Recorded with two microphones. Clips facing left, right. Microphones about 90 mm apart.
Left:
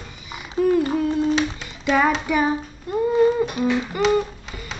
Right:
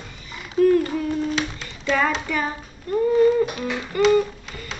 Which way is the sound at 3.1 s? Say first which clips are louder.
Right 1 dB; 15° left (ahead or behind).